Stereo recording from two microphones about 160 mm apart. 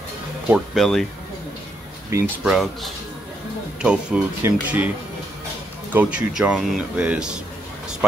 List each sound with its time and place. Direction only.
0.5 s speech: centre (ahead or behind)
2.1 s speech: 20° right (ahead or behind)
2.4 s speech: centre (ahead or behind)
5.9 s speech: 5° right (ahead or behind)